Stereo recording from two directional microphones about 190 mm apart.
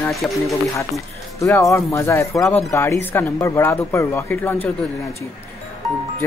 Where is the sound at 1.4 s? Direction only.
15° left (ahead or behind).